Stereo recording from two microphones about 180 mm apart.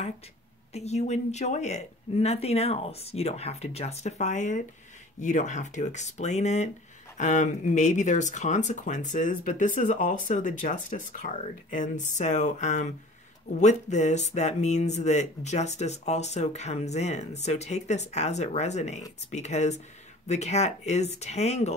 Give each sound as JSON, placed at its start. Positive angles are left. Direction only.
{"t": 0.7, "sound": "speech", "side_deg": 35}